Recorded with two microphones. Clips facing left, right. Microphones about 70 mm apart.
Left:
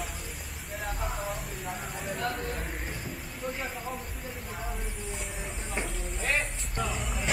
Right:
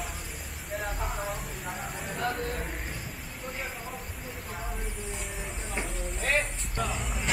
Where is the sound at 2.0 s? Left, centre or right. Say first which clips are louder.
Right 1 dB; centre.